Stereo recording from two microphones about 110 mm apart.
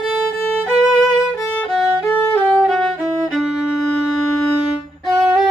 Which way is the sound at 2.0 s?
15° left (ahead or behind).